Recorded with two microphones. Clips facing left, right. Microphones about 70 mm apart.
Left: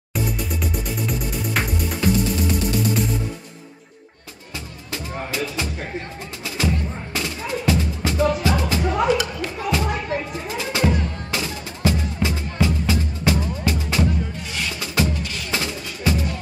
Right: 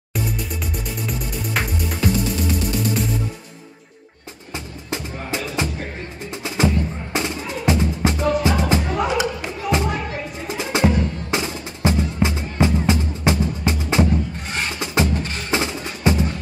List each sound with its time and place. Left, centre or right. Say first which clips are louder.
0.1 s music: left 1 dB; centre
4.9 s music: right 1 dB; right
14.5 s music: right 5 dB; right
15.5 s music: right 5 dB; right